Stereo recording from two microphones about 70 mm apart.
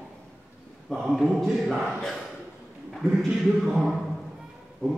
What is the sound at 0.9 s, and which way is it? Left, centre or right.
A man's voice, centre.